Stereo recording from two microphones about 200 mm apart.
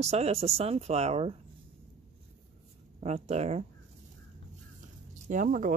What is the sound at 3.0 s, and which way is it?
Speech, 35° right (ahead or behind).